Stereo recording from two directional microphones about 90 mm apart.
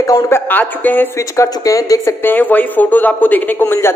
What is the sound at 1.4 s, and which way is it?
Speech, 40° left (ahead or behind).